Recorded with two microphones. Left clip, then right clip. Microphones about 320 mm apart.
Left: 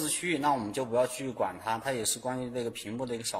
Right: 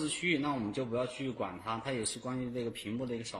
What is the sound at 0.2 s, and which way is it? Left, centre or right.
Speech, left.